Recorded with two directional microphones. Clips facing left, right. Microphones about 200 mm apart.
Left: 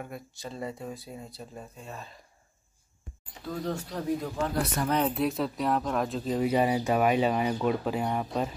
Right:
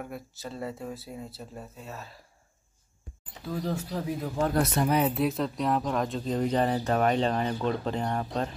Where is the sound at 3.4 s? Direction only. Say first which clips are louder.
Right 1 dB; 5° right (ahead or behind).